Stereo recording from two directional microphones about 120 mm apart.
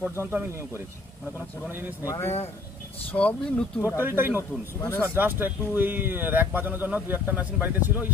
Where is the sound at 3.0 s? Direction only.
10° left (ahead or behind).